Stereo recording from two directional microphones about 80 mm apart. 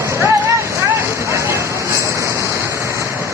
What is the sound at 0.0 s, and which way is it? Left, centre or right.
Vehicle, right.